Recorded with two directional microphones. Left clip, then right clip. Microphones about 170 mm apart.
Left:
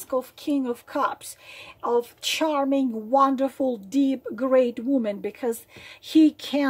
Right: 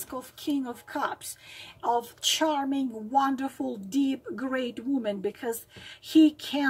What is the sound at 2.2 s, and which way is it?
A woman's voice, 35° left (ahead or behind).